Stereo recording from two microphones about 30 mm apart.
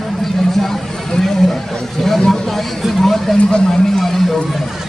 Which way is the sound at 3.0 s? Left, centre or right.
Centre.